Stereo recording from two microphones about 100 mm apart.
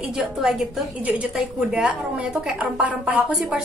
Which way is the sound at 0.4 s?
Centre (ahead or behind).